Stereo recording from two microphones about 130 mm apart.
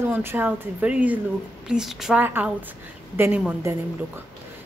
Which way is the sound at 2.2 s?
15° right (ahead or behind).